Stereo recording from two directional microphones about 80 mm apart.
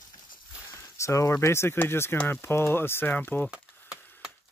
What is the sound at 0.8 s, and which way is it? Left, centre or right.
Speech, left.